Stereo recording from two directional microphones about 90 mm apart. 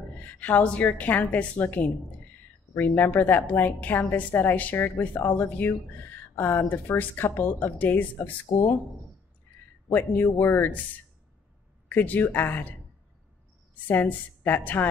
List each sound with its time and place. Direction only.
0.2 s a woman's voice: 20° left (ahead or behind)
9.8 s a woman's voice: 20° left (ahead or behind)
11.9 s a woman's voice: 20° left (ahead or behind)
13.8 s a woman's voice: 20° left (ahead or behind)